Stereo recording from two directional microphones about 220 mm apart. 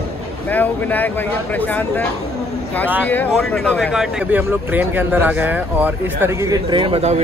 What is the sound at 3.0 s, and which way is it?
A man's voice, 5° left (ahead or behind).